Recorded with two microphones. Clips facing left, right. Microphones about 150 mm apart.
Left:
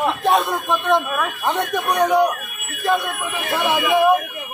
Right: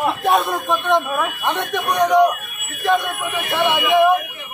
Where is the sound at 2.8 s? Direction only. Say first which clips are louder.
Right 2 dB; centre (ahead or behind).